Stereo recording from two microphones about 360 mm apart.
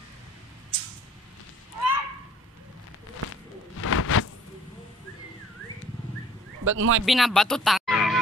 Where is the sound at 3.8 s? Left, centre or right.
Left.